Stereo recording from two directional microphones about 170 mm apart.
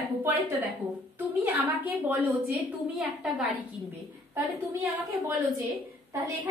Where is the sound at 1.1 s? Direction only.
10° right (ahead or behind).